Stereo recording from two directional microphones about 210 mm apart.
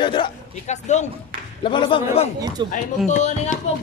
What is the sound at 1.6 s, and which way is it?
Speech, 25° left (ahead or behind).